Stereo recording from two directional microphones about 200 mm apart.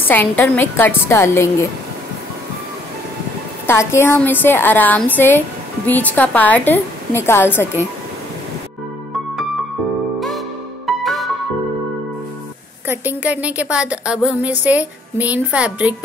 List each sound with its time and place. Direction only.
0.1 s a woman's voice: 10° left (ahead or behind)
3.6 s a woman's voice: 10° left (ahead or behind)
10.9 s music: centre (ahead or behind)
12.8 s a woman's voice: 10° right (ahead or behind)